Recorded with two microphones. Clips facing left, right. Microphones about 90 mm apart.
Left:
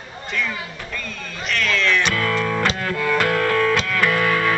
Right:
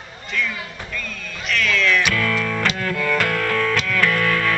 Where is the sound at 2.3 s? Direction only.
20° left (ahead or behind).